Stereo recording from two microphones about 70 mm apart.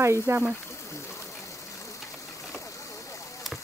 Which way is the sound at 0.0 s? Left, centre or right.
Right.